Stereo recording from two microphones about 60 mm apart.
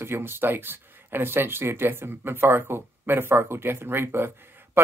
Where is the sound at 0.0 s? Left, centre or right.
Right.